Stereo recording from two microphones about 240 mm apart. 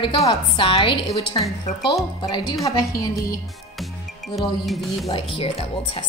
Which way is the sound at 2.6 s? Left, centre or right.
Centre.